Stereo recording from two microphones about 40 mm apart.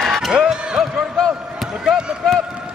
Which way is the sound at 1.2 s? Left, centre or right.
Left.